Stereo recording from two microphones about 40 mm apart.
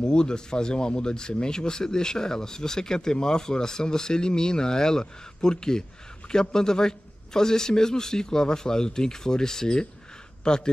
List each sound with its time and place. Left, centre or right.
0.0 s speech: centre